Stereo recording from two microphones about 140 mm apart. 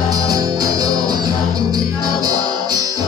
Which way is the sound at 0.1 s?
25° right (ahead or behind).